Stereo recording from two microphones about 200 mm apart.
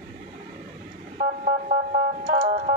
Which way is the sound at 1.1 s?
30° right (ahead or behind).